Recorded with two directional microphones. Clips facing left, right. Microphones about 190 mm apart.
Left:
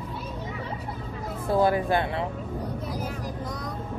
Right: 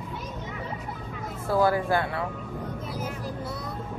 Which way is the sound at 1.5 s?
20° left (ahead or behind).